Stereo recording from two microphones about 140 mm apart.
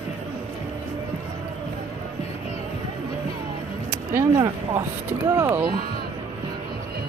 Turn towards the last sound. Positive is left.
turn(degrees=-20)  # may be behind; listen again after turning